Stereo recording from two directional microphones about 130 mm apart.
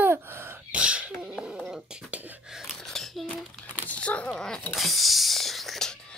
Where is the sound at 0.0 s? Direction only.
15° right (ahead or behind).